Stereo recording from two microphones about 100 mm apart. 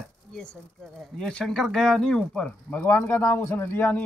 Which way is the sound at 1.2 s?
5° left (ahead or behind).